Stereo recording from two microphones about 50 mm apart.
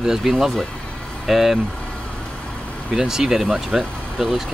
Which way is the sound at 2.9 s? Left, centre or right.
Centre.